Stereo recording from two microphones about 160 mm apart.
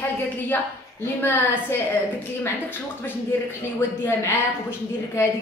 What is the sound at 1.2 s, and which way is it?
Speech, 15° left (ahead or behind).